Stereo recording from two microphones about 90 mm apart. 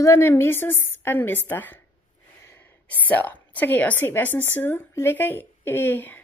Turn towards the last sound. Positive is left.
turn(degrees=20)  # may be behind; listen again after turning